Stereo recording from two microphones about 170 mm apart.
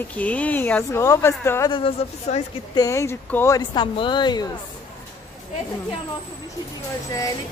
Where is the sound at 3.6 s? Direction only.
30° left (ahead or behind).